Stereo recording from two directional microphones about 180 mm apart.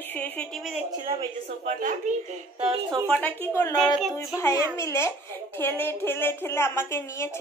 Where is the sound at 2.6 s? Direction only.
25° right (ahead or behind).